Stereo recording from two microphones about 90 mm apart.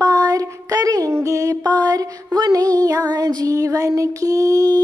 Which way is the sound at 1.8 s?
50° right (ahead or behind).